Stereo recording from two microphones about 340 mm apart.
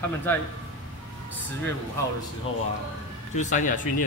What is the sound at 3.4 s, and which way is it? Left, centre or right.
Speech, left.